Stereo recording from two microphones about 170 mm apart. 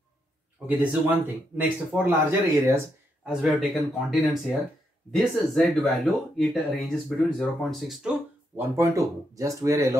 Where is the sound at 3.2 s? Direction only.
5° right (ahead or behind).